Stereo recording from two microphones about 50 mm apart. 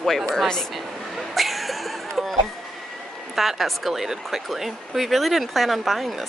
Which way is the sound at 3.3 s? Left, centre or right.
Centre.